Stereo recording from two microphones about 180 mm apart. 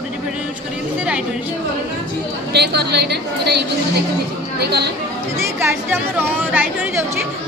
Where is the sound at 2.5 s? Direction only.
65° right (ahead or behind).